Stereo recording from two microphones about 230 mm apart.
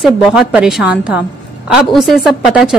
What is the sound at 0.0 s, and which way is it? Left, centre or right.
Speech, centre.